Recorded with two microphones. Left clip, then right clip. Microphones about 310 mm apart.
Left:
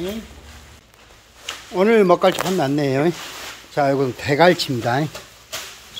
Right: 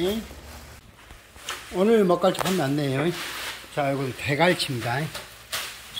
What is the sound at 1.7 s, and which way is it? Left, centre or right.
Speech, centre.